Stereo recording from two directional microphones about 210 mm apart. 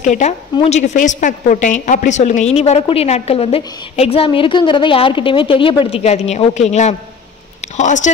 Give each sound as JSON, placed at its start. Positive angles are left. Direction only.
{"t": 0.0, "sound": "a woman's voice", "side_deg": 35}